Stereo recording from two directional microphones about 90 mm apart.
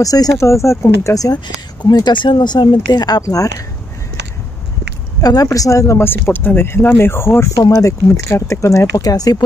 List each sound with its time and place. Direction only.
0.0 s speech: 40° left (ahead or behind)
1.8 s speech: 50° left (ahead or behind)
5.2 s speech: 45° left (ahead or behind)